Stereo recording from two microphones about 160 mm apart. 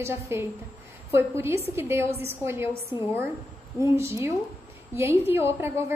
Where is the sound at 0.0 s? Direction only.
15° right (ahead or behind).